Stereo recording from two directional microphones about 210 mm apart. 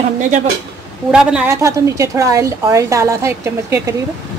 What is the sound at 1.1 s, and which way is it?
A woman's voice, 5° right (ahead or behind).